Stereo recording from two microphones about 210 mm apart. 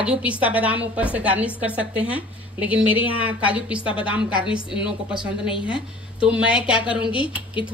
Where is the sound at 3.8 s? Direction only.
25° left (ahead or behind).